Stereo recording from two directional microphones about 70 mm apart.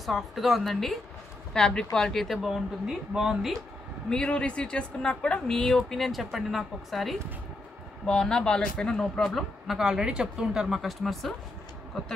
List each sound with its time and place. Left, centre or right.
0.0 s speech: centre
4.1 s speech: centre
8.1 s speech: centre